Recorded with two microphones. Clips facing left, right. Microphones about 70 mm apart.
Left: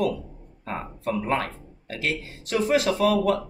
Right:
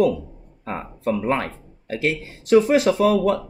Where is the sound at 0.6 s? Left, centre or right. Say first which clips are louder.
Right 4 dB; right.